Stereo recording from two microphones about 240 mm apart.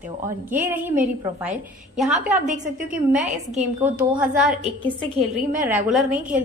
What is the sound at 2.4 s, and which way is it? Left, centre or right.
Speech, right.